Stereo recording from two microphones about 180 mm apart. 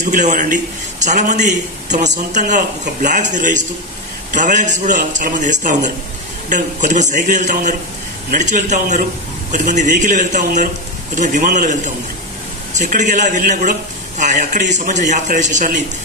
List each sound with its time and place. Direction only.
0.0 s a man's voice: 45° right (ahead or behind)